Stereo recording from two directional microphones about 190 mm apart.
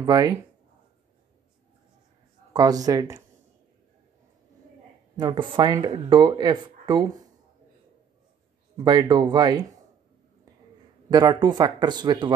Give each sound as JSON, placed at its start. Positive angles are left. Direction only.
{"t": 0.0, "sound": "speech", "side_deg": -20}
{"t": 2.5, "sound": "speech", "side_deg": -20}
{"t": 5.1, "sound": "speech", "side_deg": -25}
{"t": 8.7, "sound": "speech", "side_deg": -20}
{"t": 11.1, "sound": "speech", "side_deg": -20}